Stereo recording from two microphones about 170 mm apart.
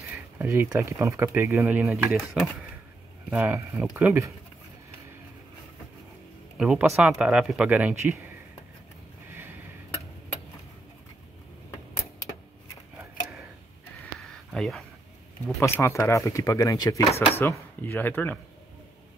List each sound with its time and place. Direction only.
0.1 s speech: 10° right (ahead or behind)
2.1 s speech: centre (ahead or behind)
3.3 s speech: 10° right (ahead or behind)
6.6 s speech: 5° right (ahead or behind)
9.3 s a sound: 10° right (ahead or behind)
12.9 s scissors: 5° right (ahead or behind)
14.3 s a sound: 5° left (ahead or behind)
15.4 s speech: 15° left (ahead or behind)
17.4 s speech: 10° left (ahead or behind)